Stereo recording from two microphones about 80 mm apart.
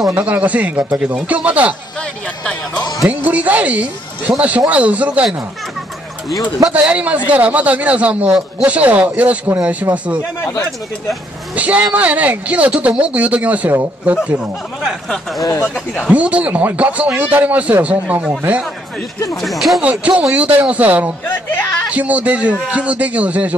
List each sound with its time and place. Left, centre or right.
0.1 s speech: centre
2.0 s a sound: centre
3.3 s speech: centre
6.7 s a man's voice: centre
11.5 s speech: centre
16.1 s a man's voice: centre
19.3 s speech: centre
19.8 s a man's voice: centre